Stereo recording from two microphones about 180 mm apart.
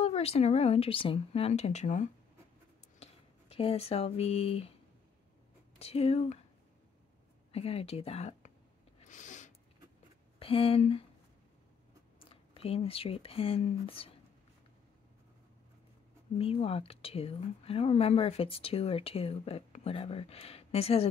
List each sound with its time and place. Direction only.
0.0 s speech: 35° left (ahead or behind)
5.8 s speech: 35° left (ahead or behind)
7.5 s speech: 35° left (ahead or behind)
9.0 s a sound: 45° left (ahead or behind)
10.4 s speech: 30° left (ahead or behind)
12.2 s speech: 30° left (ahead or behind)
16.3 s speech: 30° left (ahead or behind)